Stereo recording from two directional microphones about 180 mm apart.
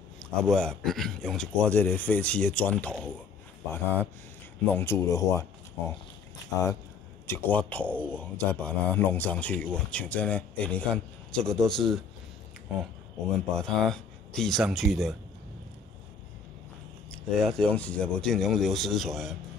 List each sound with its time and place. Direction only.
0.2 s speech: 5° left (ahead or behind)
7.9 s speech: 10° right (ahead or behind)
8.2 s speech: 10° left (ahead or behind)
13.6 s speech: 5° left (ahead or behind)
17.3 s speech: 5° left (ahead or behind)